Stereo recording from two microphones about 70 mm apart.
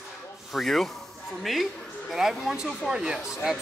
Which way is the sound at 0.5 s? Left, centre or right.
Centre.